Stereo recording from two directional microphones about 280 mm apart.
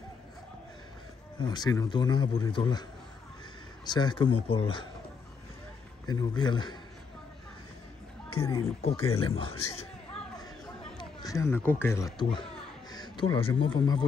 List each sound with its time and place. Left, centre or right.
1.4 s a man's voice: centre
6.0 s a man's voice: centre
8.3 s a man's voice: centre
9.1 s a man's voice: centre
11.0 s speech: centre